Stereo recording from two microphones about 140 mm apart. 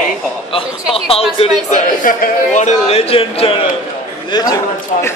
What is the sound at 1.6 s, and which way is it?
A man's voice, 65° left (ahead or behind).